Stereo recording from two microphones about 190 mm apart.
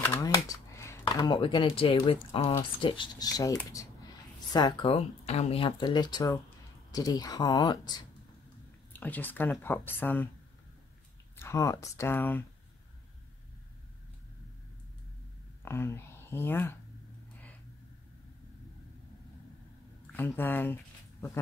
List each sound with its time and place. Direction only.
0.0 s a sound: 15° left (ahead or behind)
1.0 s speech: 25° left (ahead or behind)
8.9 s speech: 10° left (ahead or behind)
11.3 s speech: 15° left (ahead or behind)
15.6 s speech: 15° left (ahead or behind)
20.1 s speech: 10° left (ahead or behind)